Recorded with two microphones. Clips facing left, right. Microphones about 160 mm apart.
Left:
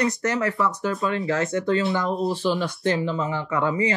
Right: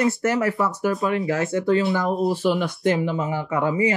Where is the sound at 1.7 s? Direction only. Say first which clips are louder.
Right 3 dB; 20° right (ahead or behind).